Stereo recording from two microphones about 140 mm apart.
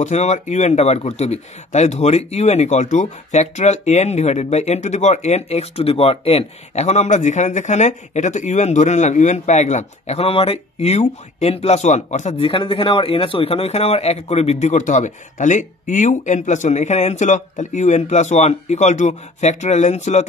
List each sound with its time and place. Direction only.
0.0 s a man's voice: 55° left (ahead or behind)